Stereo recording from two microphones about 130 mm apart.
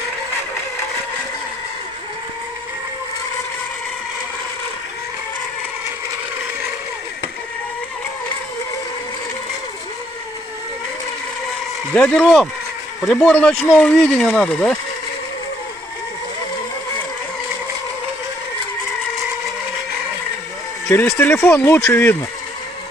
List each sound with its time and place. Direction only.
11.9 s speech: 10° left (ahead or behind)
21.2 s speech: 20° left (ahead or behind)